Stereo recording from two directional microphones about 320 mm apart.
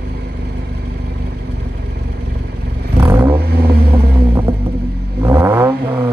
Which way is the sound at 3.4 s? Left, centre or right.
Right.